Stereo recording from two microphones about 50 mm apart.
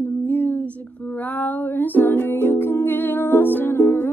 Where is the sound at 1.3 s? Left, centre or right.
Left.